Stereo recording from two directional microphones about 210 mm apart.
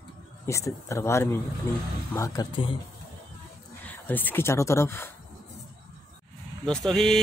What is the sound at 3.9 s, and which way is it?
Speech, 10° left (ahead or behind).